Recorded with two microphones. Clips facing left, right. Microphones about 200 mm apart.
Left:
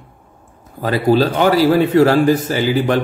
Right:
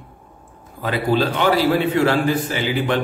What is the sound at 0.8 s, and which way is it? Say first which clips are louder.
A man's voice: left 5 dB; 40° left (ahead or behind).